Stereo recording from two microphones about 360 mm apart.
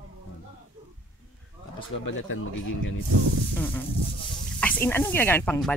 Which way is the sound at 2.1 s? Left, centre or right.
Left.